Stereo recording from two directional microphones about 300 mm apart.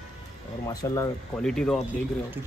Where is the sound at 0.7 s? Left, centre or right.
Centre.